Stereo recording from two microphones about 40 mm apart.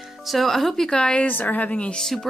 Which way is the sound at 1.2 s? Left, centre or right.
Left.